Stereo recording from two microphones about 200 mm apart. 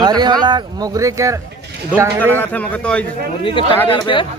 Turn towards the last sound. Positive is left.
turn(degrees=25)  # may be behind; listen again after turning